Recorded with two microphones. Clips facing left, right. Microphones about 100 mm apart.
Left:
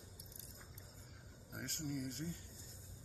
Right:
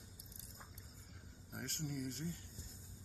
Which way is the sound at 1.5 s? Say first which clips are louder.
Left 1 dB; centre (ahead or behind).